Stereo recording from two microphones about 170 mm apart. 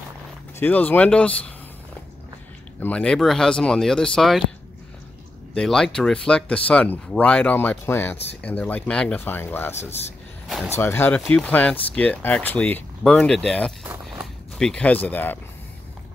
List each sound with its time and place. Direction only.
0.6 s speech: 10° left (ahead or behind)
2.8 s speech: 5° left (ahead or behind)
5.5 s speech: 5° left (ahead or behind)
9.8 s speech: 40° left (ahead or behind)
10.8 s speech: 15° left (ahead or behind)